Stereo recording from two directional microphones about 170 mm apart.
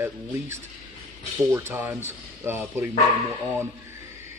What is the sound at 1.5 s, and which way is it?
Speech, 15° right (ahead or behind).